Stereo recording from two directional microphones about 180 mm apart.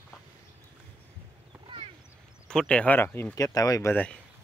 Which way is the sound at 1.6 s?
30° right (ahead or behind).